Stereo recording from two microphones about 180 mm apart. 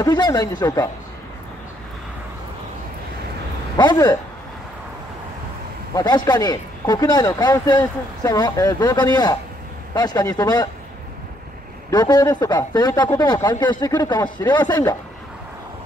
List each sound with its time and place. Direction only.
0.0 s a man's voice: 20° left (ahead or behind)
3.7 s a man's voice: 20° left (ahead or behind)
5.9 s a man's voice: 25° left (ahead or behind)
11.9 s a man's voice: 20° left (ahead or behind)